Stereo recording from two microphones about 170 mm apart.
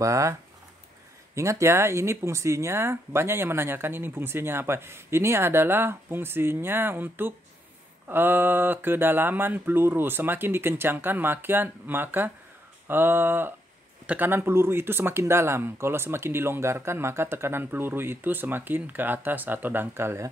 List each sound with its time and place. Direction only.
0.0 s speech: 20° right (ahead or behind)